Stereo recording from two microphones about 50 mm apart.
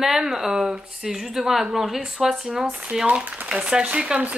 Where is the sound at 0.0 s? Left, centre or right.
Centre.